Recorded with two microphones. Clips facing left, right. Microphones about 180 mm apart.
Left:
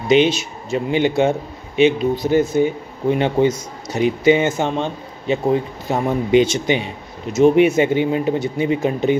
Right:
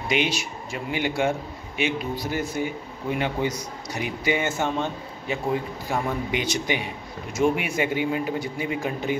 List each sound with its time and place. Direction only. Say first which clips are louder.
0.1 s speech: left 11 dB; 25° left (ahead or behind)